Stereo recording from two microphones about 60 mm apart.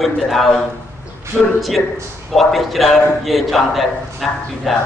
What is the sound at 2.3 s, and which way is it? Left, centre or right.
A man's voice, centre.